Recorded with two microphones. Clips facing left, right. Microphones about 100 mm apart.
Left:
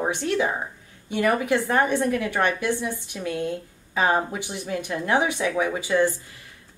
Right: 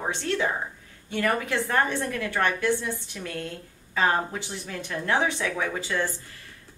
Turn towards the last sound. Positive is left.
turn(degrees=15)  # may be behind; listen again after turning